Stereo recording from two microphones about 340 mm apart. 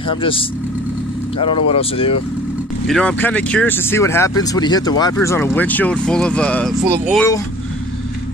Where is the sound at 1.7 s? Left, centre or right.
Centre.